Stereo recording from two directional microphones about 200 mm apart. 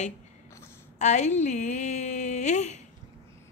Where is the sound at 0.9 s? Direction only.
35° left (ahead or behind).